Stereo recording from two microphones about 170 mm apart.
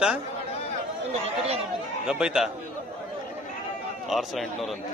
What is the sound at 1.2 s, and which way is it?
Speech, 35° right (ahead or behind).